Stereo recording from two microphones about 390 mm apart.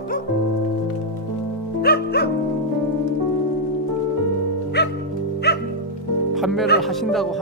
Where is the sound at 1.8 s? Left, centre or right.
Left.